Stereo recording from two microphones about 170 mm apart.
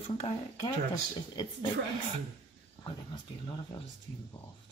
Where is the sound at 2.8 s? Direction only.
25° left (ahead or behind).